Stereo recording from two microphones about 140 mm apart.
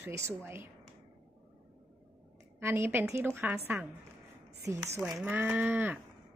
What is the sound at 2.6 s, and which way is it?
A woman's voice, 20° right (ahead or behind).